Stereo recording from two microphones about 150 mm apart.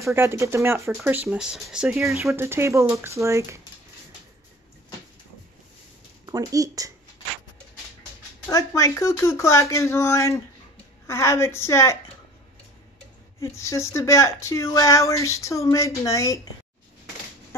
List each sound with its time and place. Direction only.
0.1 s speech: 15° right (ahead or behind)
2.2 s speech: 15° right (ahead or behind)
6.2 s speech: 25° right (ahead or behind)
8.5 s a woman's voice: 20° left (ahead or behind)
13.4 s speech: 20° left (ahead or behind)